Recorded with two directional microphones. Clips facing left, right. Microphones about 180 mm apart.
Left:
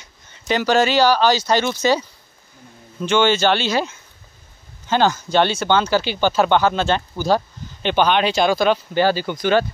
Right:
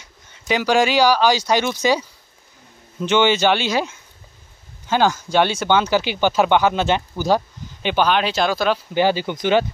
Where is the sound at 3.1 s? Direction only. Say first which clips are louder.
Even; 15° right (ahead or behind).